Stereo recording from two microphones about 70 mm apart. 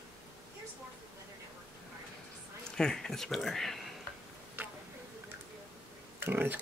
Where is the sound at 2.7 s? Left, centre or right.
Centre.